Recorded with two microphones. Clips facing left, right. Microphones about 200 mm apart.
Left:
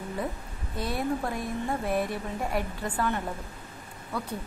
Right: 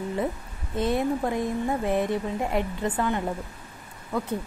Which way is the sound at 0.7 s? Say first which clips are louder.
Right 5 dB; 20° right (ahead or behind).